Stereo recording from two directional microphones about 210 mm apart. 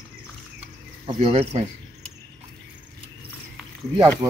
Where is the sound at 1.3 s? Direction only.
30° right (ahead or behind).